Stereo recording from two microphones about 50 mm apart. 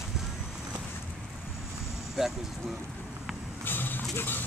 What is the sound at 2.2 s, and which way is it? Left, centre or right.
Speech, centre.